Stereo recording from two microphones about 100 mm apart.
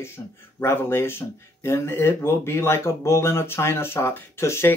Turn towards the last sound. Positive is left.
turn(degrees=25)  # may be behind; listen again after turning